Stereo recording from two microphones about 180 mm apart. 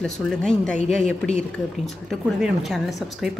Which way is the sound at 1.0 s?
40° left (ahead or behind).